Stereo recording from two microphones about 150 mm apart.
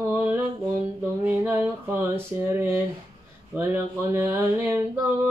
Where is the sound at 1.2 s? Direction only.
15° right (ahead or behind).